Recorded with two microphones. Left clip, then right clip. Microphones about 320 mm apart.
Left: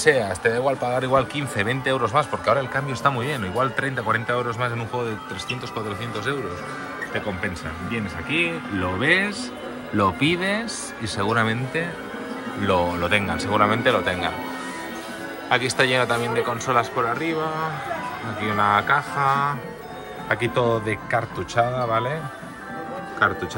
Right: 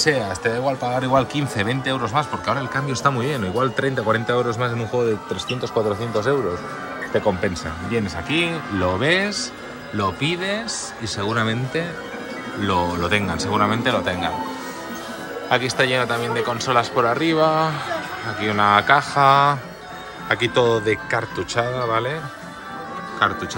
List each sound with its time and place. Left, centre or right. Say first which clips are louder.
0.0 s speech: left 1 dB; centre
7.4 s speech: right 4 dB; centre
15.5 s speech: right 1 dB; centre
23.2 s speech: right 1 dB; centre